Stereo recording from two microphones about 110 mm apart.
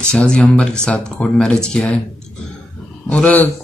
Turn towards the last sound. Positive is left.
turn(degrees=15)  # may be behind; listen again after turning